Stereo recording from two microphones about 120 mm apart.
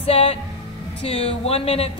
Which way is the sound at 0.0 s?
55° left (ahead or behind).